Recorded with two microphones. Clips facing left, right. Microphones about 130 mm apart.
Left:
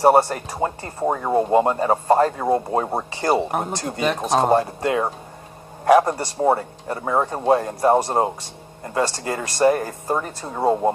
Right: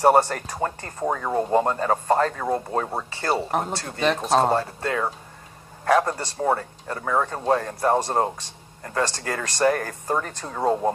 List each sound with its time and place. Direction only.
0.0 s speech: 10° left (ahead or behind)